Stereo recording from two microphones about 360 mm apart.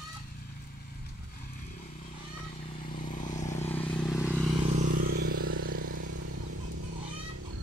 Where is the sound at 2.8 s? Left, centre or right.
Centre.